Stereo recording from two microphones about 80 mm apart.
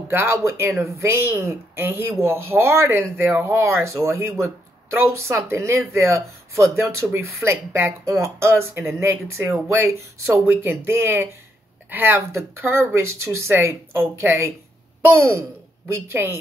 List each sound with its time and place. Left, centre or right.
0.1 s speech: right